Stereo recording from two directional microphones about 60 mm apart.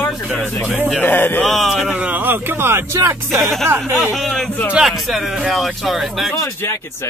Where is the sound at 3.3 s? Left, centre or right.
Centre.